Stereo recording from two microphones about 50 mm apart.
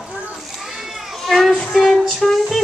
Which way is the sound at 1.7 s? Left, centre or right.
Centre.